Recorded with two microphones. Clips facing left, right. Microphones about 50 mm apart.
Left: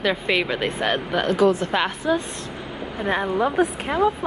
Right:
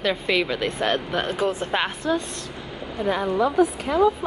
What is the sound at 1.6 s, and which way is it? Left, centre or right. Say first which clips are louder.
Speech: left 2 dB; centre.